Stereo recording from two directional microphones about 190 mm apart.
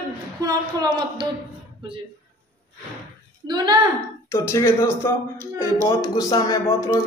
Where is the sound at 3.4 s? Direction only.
20° right (ahead or behind).